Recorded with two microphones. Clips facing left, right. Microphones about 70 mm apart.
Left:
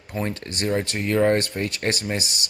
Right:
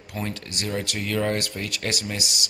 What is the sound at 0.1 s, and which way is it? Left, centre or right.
Speech, left.